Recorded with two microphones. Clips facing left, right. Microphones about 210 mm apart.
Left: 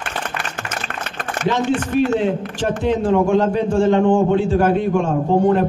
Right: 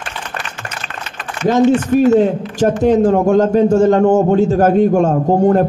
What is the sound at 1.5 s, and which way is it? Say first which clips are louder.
A man's voice: right 8 dB; 45° right (ahead or behind).